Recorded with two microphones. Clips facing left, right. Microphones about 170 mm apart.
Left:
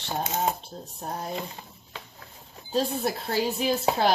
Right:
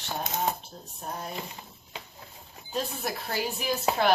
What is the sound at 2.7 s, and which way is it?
Speech, 30° left (ahead or behind).